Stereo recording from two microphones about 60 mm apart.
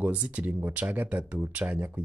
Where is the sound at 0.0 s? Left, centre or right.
Right.